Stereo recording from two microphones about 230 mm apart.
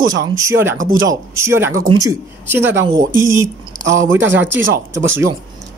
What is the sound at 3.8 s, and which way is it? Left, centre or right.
Speech, right.